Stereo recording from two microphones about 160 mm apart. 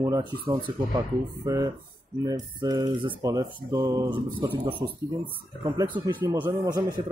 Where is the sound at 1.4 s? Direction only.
20° right (ahead or behind).